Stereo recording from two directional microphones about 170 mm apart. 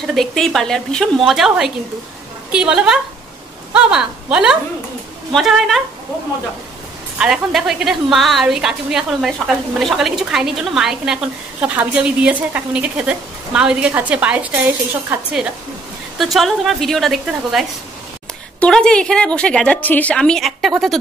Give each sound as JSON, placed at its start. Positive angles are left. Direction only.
{"t": 0.0, "sound": "a woman's voice", "side_deg": 0}
{"t": 7.2, "sound": "a woman's voice", "side_deg": -5}